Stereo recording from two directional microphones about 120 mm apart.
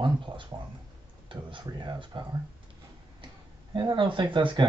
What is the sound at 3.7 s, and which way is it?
Speech, 40° right (ahead or behind).